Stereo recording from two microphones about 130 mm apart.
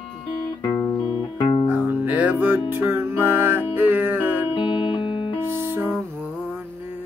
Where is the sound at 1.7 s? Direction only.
15° right (ahead or behind).